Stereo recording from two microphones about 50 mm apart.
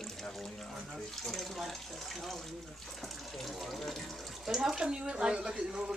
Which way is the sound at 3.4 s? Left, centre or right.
Centre.